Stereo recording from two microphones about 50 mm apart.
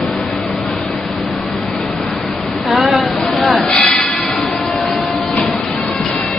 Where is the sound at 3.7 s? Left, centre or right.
Centre.